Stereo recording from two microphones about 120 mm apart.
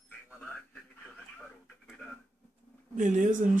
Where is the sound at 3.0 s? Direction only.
90° right.